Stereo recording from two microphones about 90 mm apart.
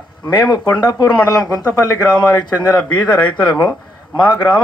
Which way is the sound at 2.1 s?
50° left (ahead or behind).